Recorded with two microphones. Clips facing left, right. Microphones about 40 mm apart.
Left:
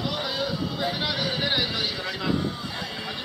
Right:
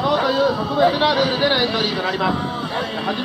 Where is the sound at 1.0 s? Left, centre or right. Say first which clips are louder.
Right 10 dB; right.